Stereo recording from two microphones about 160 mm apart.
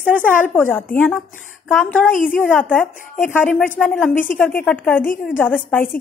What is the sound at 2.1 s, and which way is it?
Speech, 60° left (ahead or behind).